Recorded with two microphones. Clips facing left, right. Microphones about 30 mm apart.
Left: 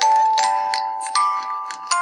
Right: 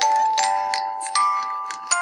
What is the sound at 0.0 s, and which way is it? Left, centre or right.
Music, left.